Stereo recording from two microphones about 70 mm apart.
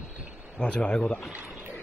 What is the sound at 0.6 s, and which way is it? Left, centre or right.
Speech, centre.